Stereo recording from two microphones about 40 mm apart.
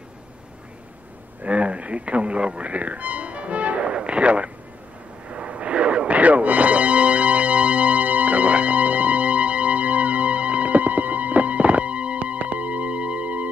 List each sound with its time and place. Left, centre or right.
1.4 s speech: right
5.3 s music: right